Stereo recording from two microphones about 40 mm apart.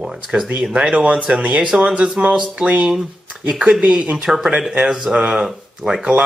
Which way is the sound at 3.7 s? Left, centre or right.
Right.